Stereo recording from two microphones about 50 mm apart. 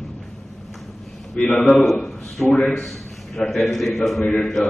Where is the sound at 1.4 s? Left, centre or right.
Centre.